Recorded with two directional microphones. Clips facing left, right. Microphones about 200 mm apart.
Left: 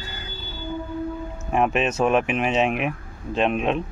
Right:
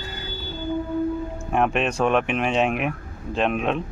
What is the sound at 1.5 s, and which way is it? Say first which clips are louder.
Speech: left 1 dB; centre (ahead or behind).